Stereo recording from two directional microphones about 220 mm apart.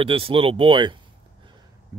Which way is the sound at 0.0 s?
25° right (ahead or behind).